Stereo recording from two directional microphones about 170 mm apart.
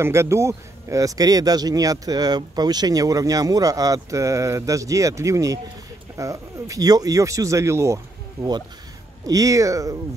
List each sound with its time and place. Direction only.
0.0 s speech: 15° right (ahead or behind)